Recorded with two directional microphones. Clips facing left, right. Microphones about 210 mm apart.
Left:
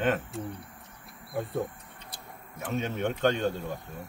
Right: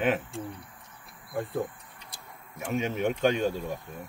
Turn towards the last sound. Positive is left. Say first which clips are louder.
# right 1 dB
turn(degrees=-10)  # may be behind; listen again after turning